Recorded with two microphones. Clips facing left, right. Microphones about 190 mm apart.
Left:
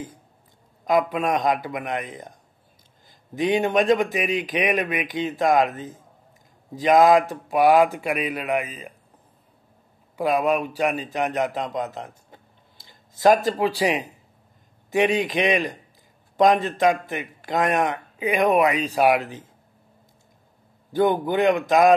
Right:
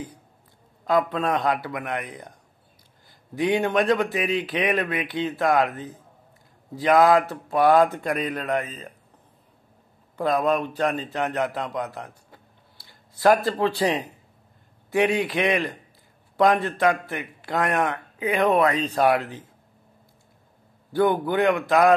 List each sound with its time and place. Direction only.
0.8 s a man's voice: 15° left (ahead or behind)
10.1 s a man's voice: 10° left (ahead or behind)
12.3 s a sound: 20° left (ahead or behind)
14.9 s a man's voice: 20° left (ahead or behind)
20.9 s a man's voice: 20° left (ahead or behind)